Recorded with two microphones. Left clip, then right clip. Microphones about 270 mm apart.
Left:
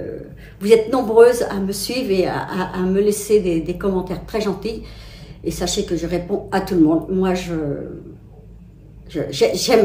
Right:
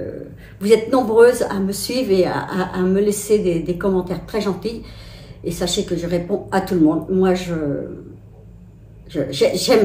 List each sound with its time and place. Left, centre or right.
0.6 s speech: centre
9.1 s speech: centre